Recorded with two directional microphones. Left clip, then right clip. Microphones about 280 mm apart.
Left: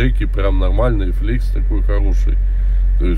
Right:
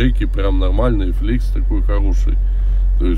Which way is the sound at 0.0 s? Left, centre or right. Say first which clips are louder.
Even; centre.